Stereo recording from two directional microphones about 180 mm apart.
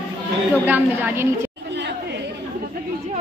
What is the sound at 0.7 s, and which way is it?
Speech, 10° right (ahead or behind).